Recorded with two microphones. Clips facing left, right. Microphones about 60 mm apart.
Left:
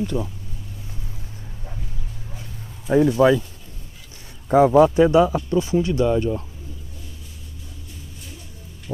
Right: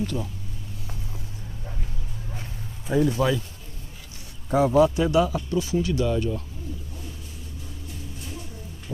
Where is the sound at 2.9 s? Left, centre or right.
Left.